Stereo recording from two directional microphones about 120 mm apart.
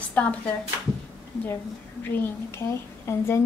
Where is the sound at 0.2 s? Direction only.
10° left (ahead or behind).